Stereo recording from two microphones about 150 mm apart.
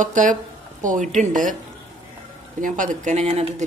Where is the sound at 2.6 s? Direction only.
60° right (ahead or behind); by 3.7 s 45° right (ahead or behind).